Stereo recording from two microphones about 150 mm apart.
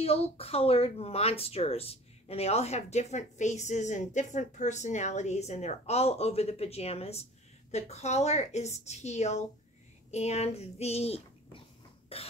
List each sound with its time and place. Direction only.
0.0 s speech: 40° left (ahead or behind)
12.1 s cough: 40° left (ahead or behind)